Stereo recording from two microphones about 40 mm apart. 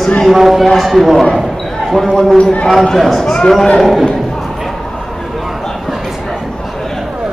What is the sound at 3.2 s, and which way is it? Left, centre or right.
Speech, centre.